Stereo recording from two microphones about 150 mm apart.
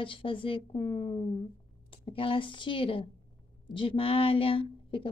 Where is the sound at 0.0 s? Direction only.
35° left (ahead or behind).